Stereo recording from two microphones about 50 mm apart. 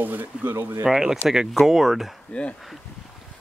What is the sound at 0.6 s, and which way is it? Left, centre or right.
Speech, right.